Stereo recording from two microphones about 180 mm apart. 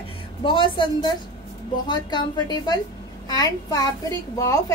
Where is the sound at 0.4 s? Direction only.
30° left (ahead or behind).